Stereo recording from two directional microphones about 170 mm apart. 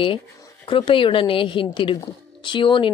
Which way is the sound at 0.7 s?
30° left (ahead or behind).